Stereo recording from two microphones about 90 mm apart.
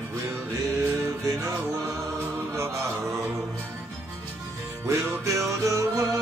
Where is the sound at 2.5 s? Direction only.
30° right (ahead or behind).